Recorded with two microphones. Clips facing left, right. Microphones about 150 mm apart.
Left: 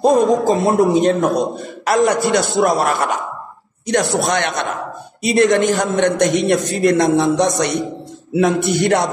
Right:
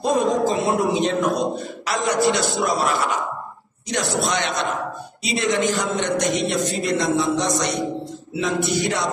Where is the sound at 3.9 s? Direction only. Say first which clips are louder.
Left 6 dB; 50° left (ahead or behind).